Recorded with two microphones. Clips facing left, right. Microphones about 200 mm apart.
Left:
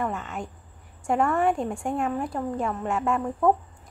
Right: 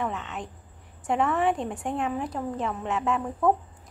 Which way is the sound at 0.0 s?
Centre (ahead or behind).